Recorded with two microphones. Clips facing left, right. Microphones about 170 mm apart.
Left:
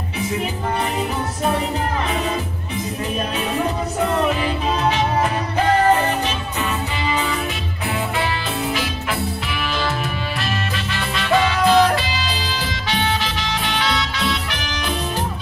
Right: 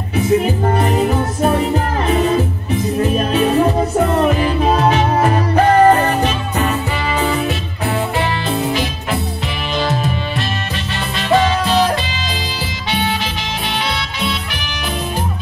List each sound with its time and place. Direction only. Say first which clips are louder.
3.0 s music: right 9 dB; 45° right (ahead or behind)
11.1 s music: right 4 dB; 25° right (ahead or behind)